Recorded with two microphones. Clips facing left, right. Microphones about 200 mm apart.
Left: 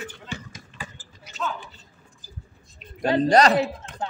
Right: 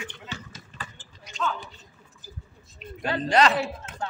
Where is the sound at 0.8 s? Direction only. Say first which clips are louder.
Left 3 dB; 5° left (ahead or behind).